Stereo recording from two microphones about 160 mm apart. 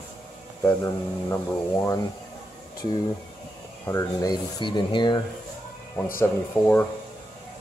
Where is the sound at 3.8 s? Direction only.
20° left (ahead or behind).